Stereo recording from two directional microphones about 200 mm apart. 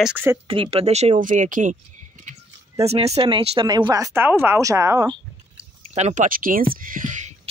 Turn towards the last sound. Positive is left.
turn(degrees=-40)  # may be behind; listen again after turning